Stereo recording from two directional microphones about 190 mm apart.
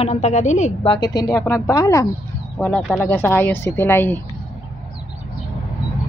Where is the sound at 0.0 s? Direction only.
35° left (ahead or behind).